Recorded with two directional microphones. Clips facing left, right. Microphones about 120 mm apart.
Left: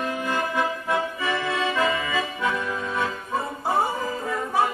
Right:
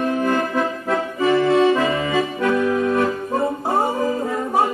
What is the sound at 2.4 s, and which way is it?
Accordion, 60° right (ahead or behind).